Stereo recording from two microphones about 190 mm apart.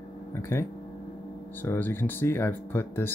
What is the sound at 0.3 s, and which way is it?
Speech, 15° left (ahead or behind).